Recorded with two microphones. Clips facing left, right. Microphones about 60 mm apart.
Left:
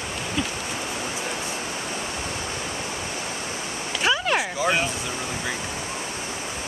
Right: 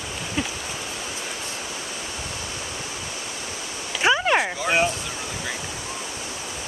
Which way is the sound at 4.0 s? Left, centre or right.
Centre.